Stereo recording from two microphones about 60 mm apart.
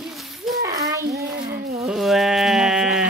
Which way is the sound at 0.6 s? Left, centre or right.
Right.